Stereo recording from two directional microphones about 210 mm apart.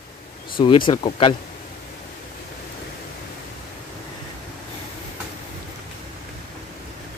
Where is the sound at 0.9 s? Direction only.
25° left (ahead or behind).